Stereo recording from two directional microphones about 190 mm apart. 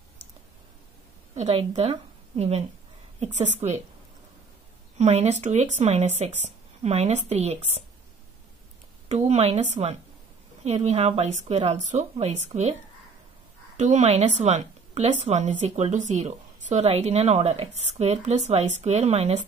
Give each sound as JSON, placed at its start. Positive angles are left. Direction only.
{"t": 1.3, "sound": "a woman's voice", "side_deg": -35}
{"t": 4.9, "sound": "a woman's voice", "side_deg": -35}
{"t": 9.1, "sound": "a woman's voice", "side_deg": -35}
{"t": 13.7, "sound": "a woman's voice", "side_deg": -35}